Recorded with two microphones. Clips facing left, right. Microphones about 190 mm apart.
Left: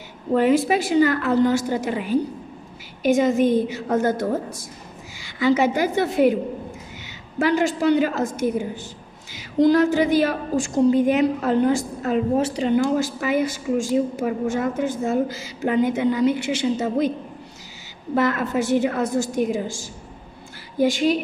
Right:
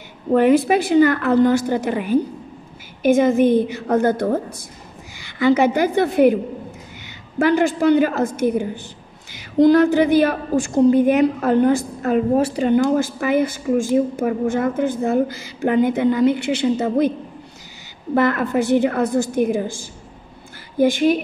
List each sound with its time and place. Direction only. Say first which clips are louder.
0.3 s a woman's voice: right 3 dB; 55° right (ahead or behind)
18.1 s a woman's voice: right 3 dB; 55° right (ahead or behind)